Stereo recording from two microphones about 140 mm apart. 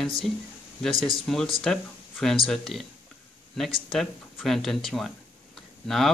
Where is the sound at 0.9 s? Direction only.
25° right (ahead or behind).